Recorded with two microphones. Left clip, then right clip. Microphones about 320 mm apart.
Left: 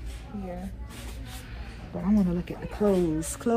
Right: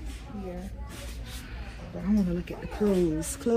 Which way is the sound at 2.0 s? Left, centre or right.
Left.